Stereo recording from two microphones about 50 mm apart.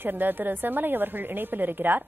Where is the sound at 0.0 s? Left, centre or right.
Right.